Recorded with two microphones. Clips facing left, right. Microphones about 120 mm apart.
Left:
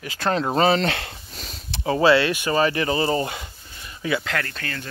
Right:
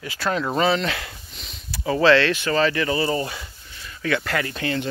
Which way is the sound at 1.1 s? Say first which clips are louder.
Left 3 dB; 40° left (ahead or behind).